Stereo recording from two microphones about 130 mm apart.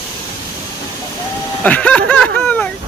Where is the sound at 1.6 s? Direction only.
10° left (ahead or behind).